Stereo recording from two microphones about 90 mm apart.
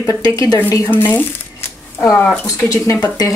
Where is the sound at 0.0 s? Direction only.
35° left (ahead or behind).